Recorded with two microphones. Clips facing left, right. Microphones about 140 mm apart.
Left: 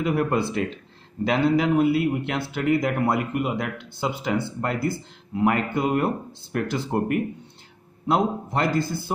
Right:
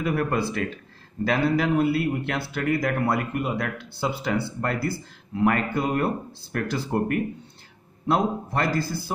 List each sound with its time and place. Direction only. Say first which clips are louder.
0.0 s a man's voice: left 2 dB; 20° left (ahead or behind)